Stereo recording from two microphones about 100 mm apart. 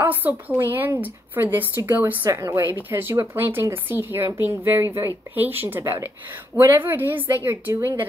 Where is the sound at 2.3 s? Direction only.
30° right (ahead or behind).